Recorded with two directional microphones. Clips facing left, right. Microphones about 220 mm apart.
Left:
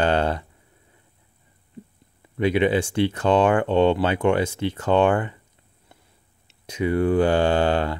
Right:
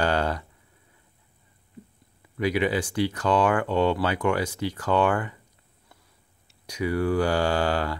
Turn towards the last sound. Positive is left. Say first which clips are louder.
# left 4 dB
turn(degrees=25)  # may be behind; listen again after turning